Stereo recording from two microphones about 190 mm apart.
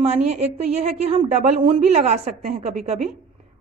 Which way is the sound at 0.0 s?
35° right (ahead or behind).